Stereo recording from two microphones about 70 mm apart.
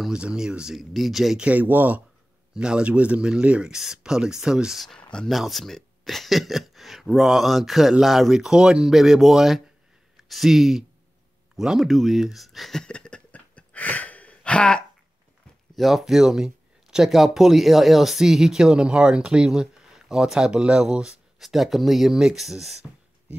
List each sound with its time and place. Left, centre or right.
0.1 s speech: centre
1.4 s speech: right
2.5 s speech: centre
4.8 s speech: centre
12.8 s a sound: centre
15.7 s speech: centre